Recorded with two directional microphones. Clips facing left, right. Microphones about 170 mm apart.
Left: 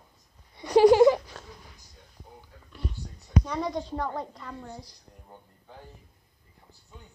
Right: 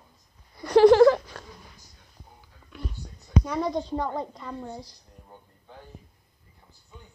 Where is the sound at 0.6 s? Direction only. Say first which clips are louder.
Right 2 dB; 15° left (ahead or behind).